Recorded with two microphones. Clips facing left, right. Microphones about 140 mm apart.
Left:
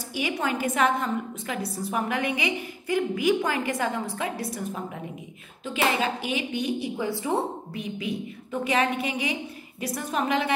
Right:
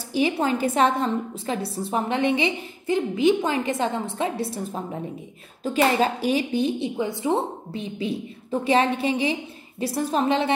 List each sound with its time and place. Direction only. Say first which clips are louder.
0.1 s a woman's voice: right 6 dB; 30° right (ahead or behind)
5.6 s a woman's voice: right 5 dB; 40° right (ahead or behind)